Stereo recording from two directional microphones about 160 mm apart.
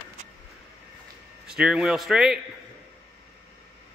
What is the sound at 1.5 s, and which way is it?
Speech, 5° right (ahead or behind).